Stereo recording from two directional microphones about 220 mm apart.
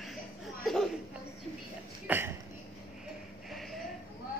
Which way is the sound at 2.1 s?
5° right (ahead or behind).